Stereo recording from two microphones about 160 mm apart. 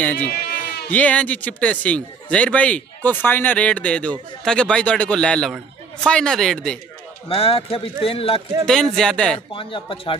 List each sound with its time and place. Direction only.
0.0 s a man's voice: 10° left (ahead or behind)
7.2 s speech: 35° left (ahead or behind)
8.6 s speech: 5° left (ahead or behind)
9.5 s speech: 30° left (ahead or behind)